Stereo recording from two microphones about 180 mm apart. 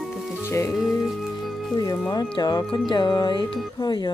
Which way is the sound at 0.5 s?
15° left (ahead or behind).